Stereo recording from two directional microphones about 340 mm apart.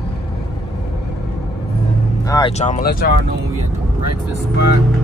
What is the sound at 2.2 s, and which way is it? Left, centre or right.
Speech, centre.